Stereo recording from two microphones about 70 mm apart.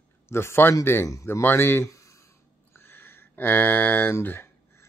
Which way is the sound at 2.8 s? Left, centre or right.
Left.